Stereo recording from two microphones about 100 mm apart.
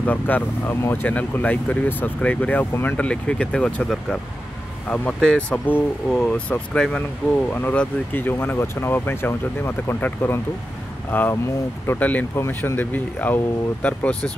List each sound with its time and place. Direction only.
0.0 s speech: 15° left (ahead or behind)
7.0 s speech: 20° left (ahead or behind)